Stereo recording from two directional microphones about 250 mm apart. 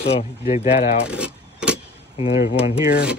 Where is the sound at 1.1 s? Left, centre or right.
Centre.